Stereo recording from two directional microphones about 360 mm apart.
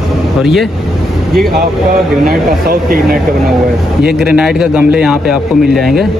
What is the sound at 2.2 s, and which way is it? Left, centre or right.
Speech, right.